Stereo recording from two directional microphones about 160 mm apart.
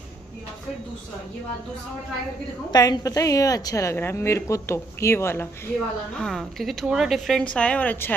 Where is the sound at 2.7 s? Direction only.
25° left (ahead or behind).